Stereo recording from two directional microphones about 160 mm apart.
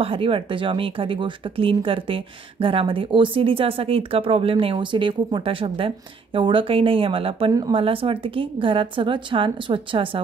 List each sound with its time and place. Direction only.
0.0 s speech: 35° right (ahead or behind)